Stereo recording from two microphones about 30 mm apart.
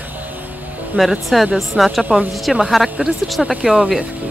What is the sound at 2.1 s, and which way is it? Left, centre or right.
Speech, right.